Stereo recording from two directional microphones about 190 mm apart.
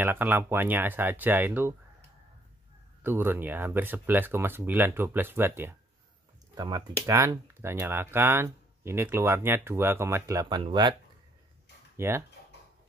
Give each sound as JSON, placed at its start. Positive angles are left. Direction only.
{"t": 0.0, "sound": "speech", "side_deg": -10}
{"t": 3.0, "sound": "speech", "side_deg": -10}
{"t": 12.0, "sound": "speech", "side_deg": -15}